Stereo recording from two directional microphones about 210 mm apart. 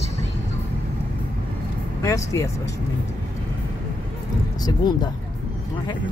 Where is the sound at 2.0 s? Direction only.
15° left (ahead or behind).